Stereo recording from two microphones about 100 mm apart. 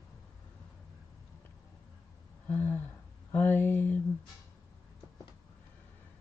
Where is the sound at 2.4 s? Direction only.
20° left (ahead or behind).